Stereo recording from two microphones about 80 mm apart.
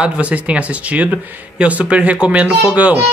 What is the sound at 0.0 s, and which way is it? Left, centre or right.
Speech, centre.